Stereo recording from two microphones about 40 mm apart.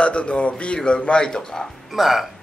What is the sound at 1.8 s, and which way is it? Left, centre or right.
Speech, centre.